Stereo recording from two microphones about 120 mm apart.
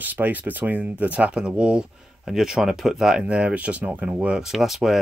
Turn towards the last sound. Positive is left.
turn(degrees=-5)  # may be behind; listen again after turning